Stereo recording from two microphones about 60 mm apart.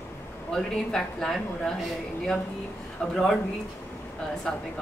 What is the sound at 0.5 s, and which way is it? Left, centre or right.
Speech, centre.